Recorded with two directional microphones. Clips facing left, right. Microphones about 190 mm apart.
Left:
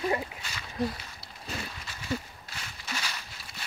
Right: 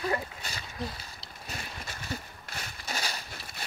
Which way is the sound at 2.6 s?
40° right (ahead or behind).